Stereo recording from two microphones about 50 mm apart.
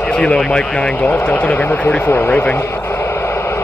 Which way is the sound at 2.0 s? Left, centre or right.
Left.